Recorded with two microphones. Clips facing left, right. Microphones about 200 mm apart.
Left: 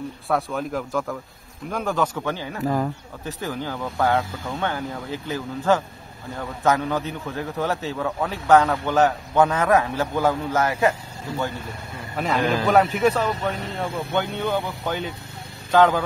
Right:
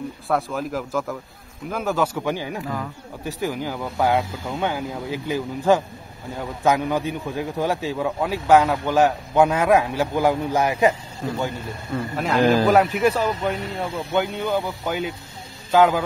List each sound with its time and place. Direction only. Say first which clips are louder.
0.3 s a man's voice: even; centre (ahead or behind)
2.6 s speech: left 6 dB; 40° left (ahead or behind)
3.3 s a man's voice: right 3 dB; 10° right (ahead or behind)
12.2 s a man's voice: right 4 dB; centre (ahead or behind)